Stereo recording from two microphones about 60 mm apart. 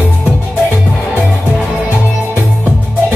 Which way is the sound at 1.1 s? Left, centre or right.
Right.